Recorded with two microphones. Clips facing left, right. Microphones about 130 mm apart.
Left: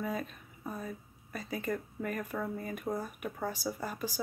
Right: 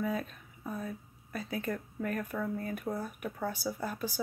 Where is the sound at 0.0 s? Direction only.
Centre (ahead or behind).